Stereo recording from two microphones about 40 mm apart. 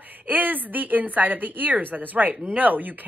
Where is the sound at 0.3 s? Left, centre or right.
Right.